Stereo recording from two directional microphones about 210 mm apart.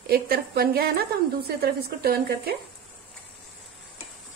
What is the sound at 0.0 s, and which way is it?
A woman's voice, 45° right (ahead or behind).